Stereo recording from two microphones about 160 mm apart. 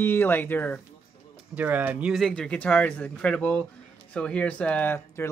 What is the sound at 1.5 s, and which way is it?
A man's voice, 10° right (ahead or behind).